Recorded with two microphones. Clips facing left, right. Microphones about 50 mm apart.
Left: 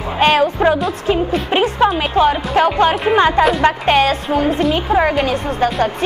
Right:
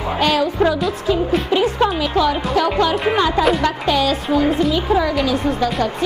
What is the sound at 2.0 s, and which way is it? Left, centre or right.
A woman's voice, left.